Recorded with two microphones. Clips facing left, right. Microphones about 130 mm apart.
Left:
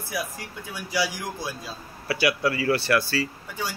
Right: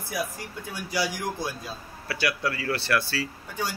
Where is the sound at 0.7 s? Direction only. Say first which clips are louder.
Left 2 dB; 45° right (ahead or behind).